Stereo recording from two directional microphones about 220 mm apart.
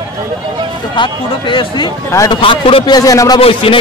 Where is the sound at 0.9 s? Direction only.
20° left (ahead or behind).